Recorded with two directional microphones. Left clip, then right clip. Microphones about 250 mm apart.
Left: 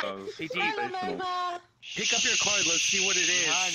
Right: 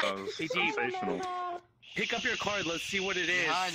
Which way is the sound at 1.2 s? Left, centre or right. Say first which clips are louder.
Left 5 dB; left.